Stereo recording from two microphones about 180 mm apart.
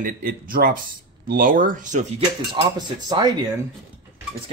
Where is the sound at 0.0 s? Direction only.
50° right (ahead or behind).